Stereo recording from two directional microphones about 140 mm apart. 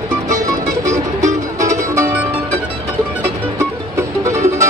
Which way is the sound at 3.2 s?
20° right (ahead or behind).